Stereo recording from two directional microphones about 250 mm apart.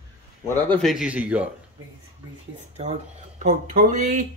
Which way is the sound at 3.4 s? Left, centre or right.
Right.